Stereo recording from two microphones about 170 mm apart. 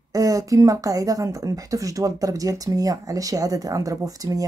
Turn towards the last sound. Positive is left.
turn(degrees=-20)  # may be behind; listen again after turning